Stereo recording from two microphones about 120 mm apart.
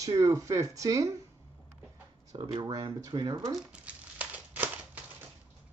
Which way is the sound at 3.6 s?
10° right (ahead or behind).